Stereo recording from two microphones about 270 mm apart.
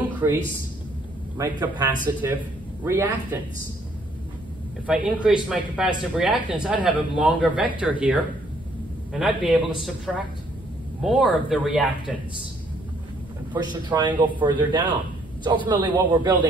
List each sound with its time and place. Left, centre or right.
0.2 s a man's voice: centre
1.4 s a man's voice: centre
4.8 s speech: centre
13.5 s a man's voice: centre